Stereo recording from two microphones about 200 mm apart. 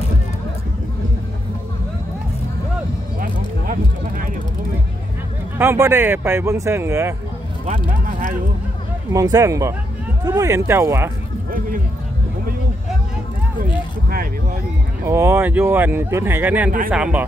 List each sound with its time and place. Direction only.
3.2 s a sound: 45° right (ahead or behind)
5.6 s speech: 10° right (ahead or behind)
9.1 s speech: 15° right (ahead or behind)
15.0 s speech: 15° right (ahead or behind)